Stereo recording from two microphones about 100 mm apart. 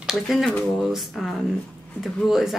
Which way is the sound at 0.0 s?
5° right (ahead or behind).